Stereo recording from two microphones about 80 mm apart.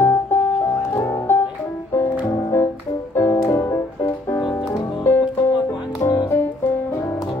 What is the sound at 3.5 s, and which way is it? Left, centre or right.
Music, left.